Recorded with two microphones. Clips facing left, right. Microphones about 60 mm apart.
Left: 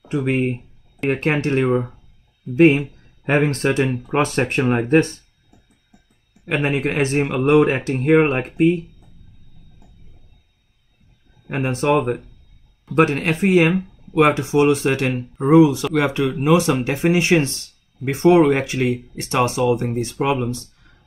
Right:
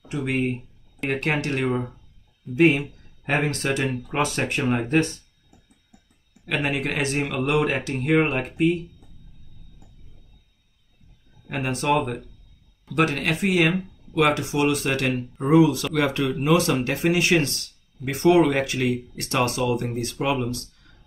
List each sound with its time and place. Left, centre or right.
0.1 s speech: left
6.4 s speech: left
11.4 s speech: left
15.3 s speech: centre
15.7 s speech: left